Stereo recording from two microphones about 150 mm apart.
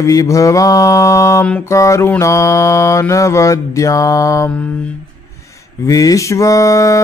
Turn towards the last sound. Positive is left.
turn(degrees=20)  # may be behind; listen again after turning